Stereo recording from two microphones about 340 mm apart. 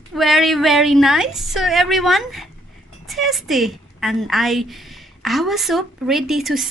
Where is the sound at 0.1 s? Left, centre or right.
Centre.